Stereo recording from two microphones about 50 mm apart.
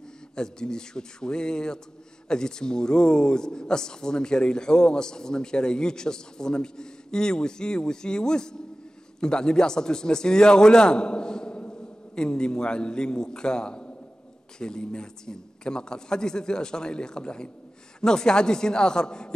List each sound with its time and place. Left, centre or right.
0.4 s a man's voice: centre